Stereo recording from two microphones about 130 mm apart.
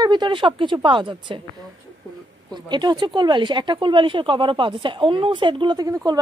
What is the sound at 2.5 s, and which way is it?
Speech, 35° right (ahead or behind).